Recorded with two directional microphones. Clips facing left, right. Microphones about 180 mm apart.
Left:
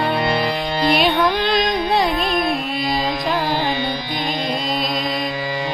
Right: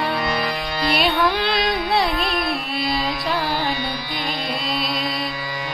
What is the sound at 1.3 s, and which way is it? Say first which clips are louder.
Music: left 3 dB; 5° right (ahead or behind).